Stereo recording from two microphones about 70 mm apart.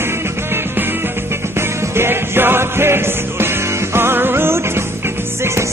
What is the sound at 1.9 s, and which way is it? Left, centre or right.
Music, right.